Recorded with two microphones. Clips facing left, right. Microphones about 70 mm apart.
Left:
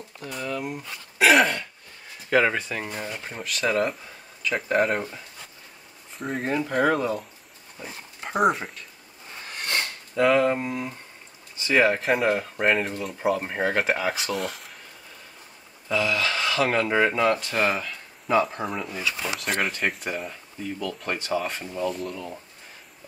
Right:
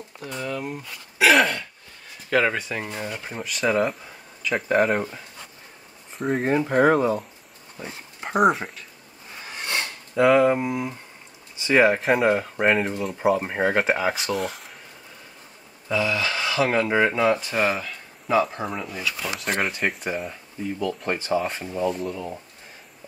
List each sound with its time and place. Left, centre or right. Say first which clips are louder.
0.2 s speech: right 1 dB; centre
6.1 s speech: right 5 dB; centre
6.5 s speech: right 4 dB; right
7.0 s speech: right 4 dB; centre
8.4 s speech: right 3 dB; centre
9.5 s a sound: even; centre
11.6 s speech: right 3 dB; centre
15.9 s speech: right 1 dB; centre